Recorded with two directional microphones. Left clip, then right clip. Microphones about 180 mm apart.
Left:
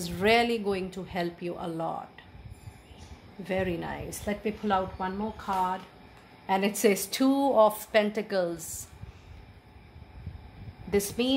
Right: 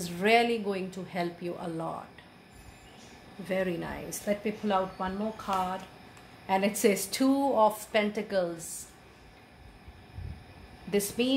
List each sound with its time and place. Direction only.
0.0 s speech: 35° left (ahead or behind)
3.4 s speech: 35° left (ahead or behind)
6.4 s speech: 40° left (ahead or behind)
10.9 s speech: 35° left (ahead or behind)